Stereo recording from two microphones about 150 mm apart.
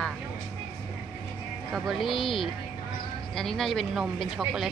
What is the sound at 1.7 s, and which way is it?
Speech, centre (ahead or behind).